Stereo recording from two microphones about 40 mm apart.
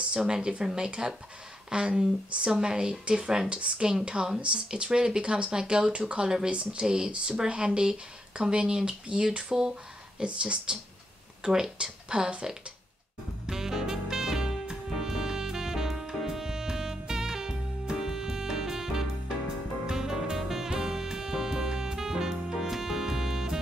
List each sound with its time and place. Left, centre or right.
0.0 s speech: right
10.2 s speech: right
13.5 s music: centre
14.1 s saxophone: centre
19.9 s music: centre